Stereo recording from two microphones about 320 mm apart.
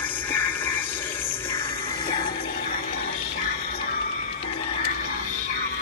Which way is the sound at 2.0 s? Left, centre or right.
Left.